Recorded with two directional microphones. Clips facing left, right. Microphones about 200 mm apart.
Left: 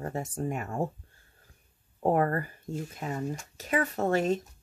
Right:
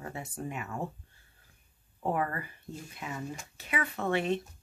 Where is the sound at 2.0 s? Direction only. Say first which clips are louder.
Left 6 dB; 45° left (ahead or behind).